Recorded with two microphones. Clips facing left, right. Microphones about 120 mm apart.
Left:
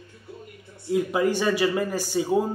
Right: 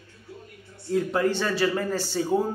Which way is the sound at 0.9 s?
10° left (ahead or behind).